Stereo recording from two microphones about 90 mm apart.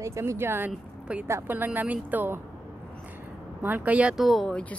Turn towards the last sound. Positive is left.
turn(degrees=15)  # may be behind; listen again after turning